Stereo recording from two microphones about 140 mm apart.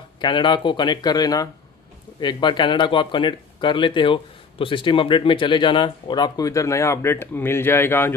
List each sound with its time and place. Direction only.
0.2 s speech: 35° left (ahead or behind); by 8.1 s 15° left (ahead or behind)